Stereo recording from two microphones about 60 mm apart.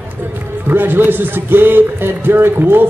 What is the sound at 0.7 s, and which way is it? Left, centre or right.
Speech, right.